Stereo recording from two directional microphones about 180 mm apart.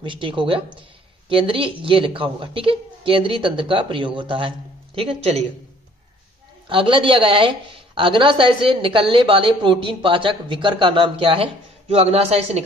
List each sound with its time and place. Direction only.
0.0 s a woman's voice: 25° right (ahead or behind)
6.7 s a woman's voice: 30° right (ahead or behind)